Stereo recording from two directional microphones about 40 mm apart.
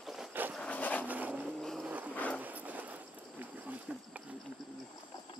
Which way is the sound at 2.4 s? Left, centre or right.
Right.